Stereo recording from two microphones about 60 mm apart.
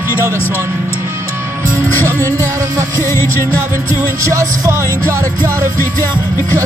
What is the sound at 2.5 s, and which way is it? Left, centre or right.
Music, right.